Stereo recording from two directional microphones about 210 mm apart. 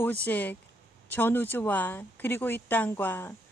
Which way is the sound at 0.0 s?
10° left (ahead or behind).